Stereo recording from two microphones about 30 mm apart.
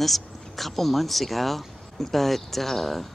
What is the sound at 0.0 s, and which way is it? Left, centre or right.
Speech, centre.